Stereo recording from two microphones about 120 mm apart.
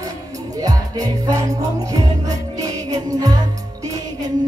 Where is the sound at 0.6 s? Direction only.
30° right (ahead or behind).